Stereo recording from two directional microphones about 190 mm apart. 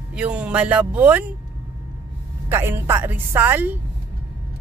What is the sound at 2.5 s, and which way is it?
Speech, 10° right (ahead or behind).